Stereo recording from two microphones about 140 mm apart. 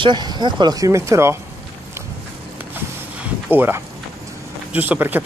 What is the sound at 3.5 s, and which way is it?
Speech, 15° right (ahead or behind).